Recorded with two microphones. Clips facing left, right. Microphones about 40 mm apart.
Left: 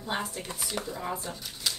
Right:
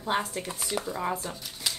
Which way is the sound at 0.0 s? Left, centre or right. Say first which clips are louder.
Right 4 dB; right.